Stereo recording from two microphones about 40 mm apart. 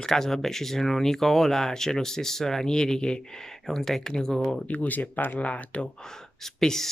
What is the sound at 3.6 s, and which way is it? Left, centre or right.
Speech, centre.